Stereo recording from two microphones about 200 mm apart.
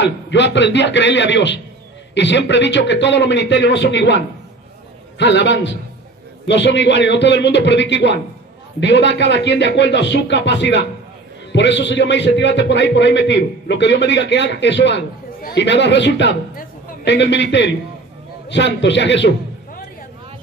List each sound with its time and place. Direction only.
0.0 s a man's voice: 60° left (ahead or behind)
5.2 s a man's voice: 60° left (ahead or behind)